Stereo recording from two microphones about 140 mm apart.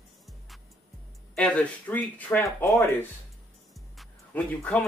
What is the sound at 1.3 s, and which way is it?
A man's voice, 10° left (ahead or behind).